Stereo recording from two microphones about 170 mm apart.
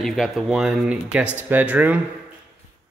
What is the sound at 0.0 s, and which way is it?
Speech, centre (ahead or behind).